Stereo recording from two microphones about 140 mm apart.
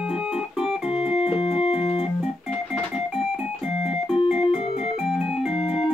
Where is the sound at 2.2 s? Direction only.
Centre (ahead or behind).